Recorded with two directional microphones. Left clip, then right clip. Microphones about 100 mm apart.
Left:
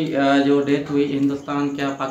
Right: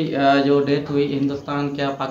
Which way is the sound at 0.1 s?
30° right (ahead or behind).